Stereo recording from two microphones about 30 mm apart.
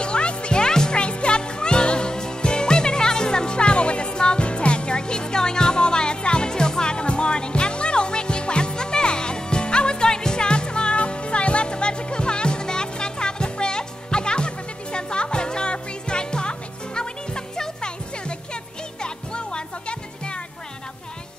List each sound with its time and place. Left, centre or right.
0.0 s music: left
0.6 s music: left